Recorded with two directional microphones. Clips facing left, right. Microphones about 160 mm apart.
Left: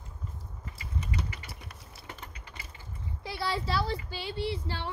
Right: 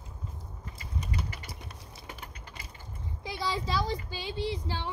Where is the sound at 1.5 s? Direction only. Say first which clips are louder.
Right 2 dB; 20° right (ahead or behind).